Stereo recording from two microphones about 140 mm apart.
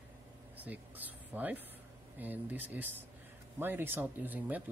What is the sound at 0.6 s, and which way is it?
Speech, 10° right (ahead or behind).